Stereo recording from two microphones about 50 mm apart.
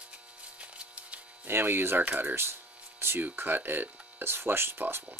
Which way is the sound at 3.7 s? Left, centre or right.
Right.